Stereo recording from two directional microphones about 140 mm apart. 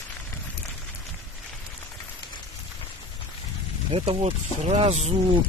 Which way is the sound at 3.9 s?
45° right (ahead or behind).